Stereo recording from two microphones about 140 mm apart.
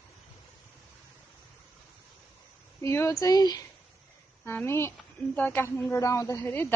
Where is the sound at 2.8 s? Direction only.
20° left (ahead or behind).